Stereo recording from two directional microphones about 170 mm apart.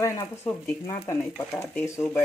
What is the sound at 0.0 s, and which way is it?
Speech, 15° left (ahead or behind).